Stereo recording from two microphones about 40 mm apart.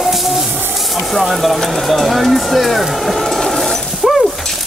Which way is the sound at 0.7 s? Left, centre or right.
Centre.